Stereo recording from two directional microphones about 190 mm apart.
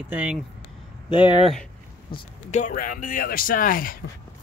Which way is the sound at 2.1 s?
40° left (ahead or behind).